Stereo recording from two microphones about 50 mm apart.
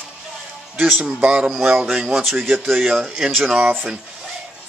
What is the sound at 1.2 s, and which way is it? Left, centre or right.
Speech, right.